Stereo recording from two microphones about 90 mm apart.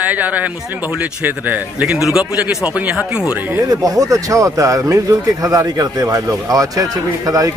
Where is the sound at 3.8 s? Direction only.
40° right (ahead or behind).